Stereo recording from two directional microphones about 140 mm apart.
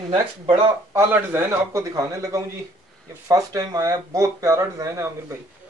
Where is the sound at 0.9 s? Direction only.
15° right (ahead or behind).